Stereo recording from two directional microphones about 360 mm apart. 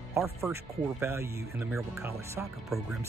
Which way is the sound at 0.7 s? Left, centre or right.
Centre.